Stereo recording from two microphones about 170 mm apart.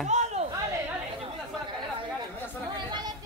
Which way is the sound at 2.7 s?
25° right (ahead or behind).